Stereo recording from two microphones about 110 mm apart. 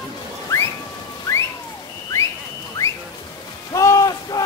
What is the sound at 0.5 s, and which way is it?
Whistling, 25° left (ahead or behind).